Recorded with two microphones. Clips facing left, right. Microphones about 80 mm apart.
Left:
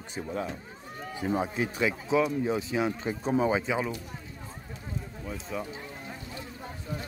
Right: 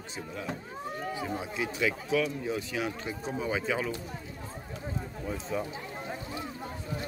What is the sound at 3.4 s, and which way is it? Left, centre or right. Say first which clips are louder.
Speech: left 3 dB; left.